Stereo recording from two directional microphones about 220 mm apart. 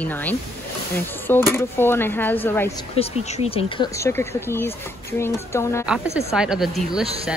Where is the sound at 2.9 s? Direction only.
25° left (ahead or behind).